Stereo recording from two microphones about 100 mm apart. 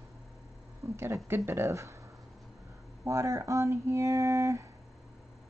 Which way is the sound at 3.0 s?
30° right (ahead or behind).